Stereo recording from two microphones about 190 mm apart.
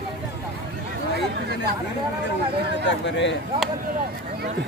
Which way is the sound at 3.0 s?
70° left (ahead or behind).